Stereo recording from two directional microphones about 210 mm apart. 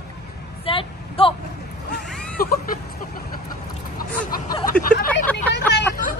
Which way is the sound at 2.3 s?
45° left (ahead or behind).